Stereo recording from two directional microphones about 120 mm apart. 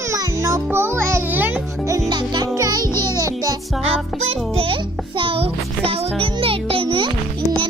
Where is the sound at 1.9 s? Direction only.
30° right (ahead or behind).